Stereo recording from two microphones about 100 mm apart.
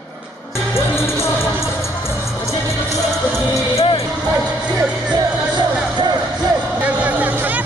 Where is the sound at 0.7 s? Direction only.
25° left (ahead or behind).